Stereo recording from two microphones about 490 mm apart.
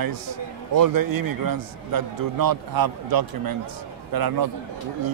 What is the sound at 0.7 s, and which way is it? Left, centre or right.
A man's voice, right.